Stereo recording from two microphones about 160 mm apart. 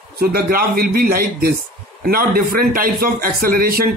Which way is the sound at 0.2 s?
70° right (ahead or behind).